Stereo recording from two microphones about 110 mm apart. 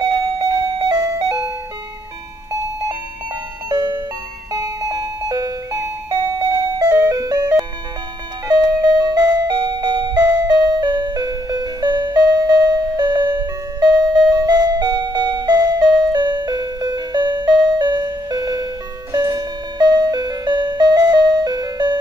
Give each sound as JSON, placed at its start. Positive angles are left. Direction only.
{"t": 0.0, "sound": "doorbell", "side_deg": -35}
{"t": 3.6, "sound": "alarm clock", "side_deg": -40}
{"t": 6.9, "sound": "music", "side_deg": -30}